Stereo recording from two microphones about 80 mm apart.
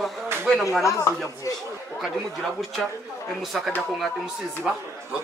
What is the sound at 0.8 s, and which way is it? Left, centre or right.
Speech, left.